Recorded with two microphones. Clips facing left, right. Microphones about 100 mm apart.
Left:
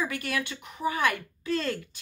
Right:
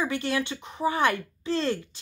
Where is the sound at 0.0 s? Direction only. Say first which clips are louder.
Right 3 dB; 25° right (ahead or behind).